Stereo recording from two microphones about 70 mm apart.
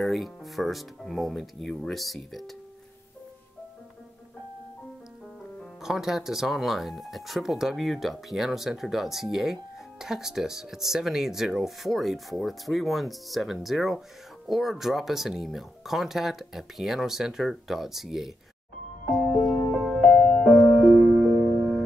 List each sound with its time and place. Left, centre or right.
0.0 s speech: centre
5.8 s speech: centre
19.3 s music: left; by 21.8 s centre